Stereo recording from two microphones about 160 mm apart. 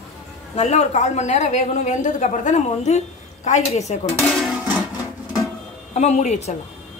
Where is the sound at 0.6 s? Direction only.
45° left (ahead or behind).